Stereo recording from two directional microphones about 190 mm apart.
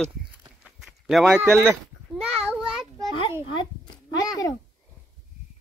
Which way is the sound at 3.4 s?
25° left (ahead or behind).